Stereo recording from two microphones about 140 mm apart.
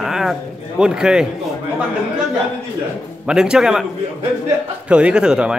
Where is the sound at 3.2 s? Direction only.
5° right (ahead or behind).